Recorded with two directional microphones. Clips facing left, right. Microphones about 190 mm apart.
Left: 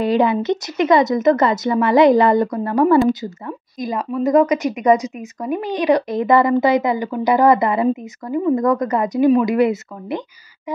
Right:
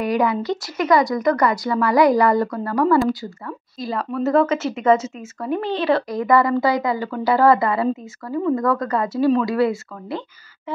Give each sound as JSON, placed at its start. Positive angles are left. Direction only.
{"t": 0.0, "sound": "speech", "side_deg": 25}